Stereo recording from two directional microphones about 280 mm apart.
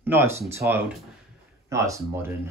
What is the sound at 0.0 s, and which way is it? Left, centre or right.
Speech, centre.